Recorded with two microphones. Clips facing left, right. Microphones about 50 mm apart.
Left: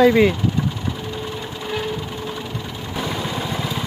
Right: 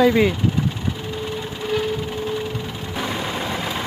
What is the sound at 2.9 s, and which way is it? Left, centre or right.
Vehicle, centre.